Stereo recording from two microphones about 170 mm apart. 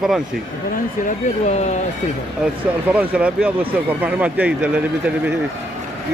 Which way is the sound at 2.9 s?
10° right (ahead or behind).